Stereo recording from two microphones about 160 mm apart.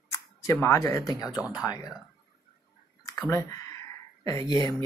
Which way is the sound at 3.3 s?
20° left (ahead or behind).